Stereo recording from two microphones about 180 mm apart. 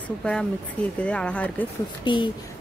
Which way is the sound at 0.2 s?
5° left (ahead or behind).